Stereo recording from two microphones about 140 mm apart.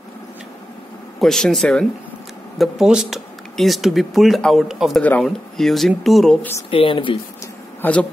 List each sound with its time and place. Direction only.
1.2 s speech: centre (ahead or behind)
6.7 s speech: 40° left (ahead or behind)
7.8 s speech: 10° left (ahead or behind)